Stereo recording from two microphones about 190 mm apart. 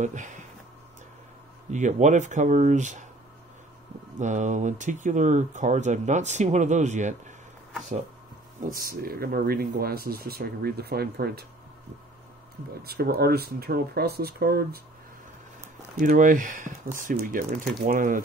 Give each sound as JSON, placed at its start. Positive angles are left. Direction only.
{"t": 0.0, "sound": "speech", "side_deg": -40}
{"t": 1.7, "sound": "speech", "side_deg": -40}
{"t": 4.2, "sound": "speech", "side_deg": -40}
{"t": 8.5, "sound": "speech", "side_deg": -50}
{"t": 12.8, "sound": "speech", "side_deg": -55}
{"t": 16.0, "sound": "speech", "side_deg": -45}